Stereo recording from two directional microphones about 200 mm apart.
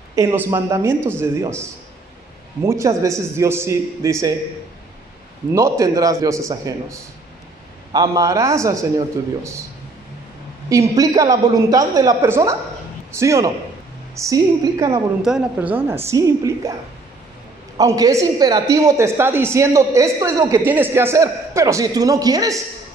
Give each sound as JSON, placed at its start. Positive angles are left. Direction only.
{"t": 0.1, "sound": "a woman's voice", "side_deg": -15}
{"t": 5.5, "sound": "a woman's voice", "side_deg": -15}
{"t": 10.7, "sound": "a woman's voice", "side_deg": -15}
{"t": 15.2, "sound": "a woman's voice", "side_deg": -5}
{"t": 17.7, "sound": "a woman's voice", "side_deg": -15}